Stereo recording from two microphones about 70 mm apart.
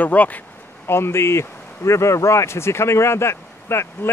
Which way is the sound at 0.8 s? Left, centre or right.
Left.